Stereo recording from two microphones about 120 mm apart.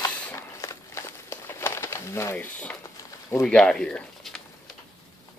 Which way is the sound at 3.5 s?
5° left (ahead or behind).